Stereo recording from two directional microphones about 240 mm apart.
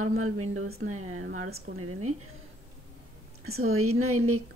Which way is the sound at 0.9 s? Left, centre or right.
Right.